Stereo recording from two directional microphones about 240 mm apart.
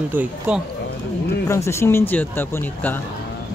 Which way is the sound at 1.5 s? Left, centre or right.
Centre.